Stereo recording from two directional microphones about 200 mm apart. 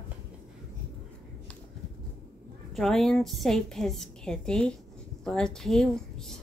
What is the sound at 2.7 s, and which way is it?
A woman's voice, centre (ahead or behind).